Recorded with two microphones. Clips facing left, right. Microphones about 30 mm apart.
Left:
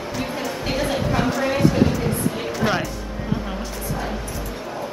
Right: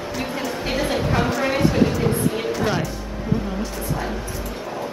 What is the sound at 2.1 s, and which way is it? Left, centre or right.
Music, centre.